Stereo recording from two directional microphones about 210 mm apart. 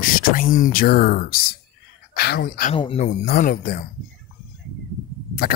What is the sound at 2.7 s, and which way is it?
Speech, 25° left (ahead or behind).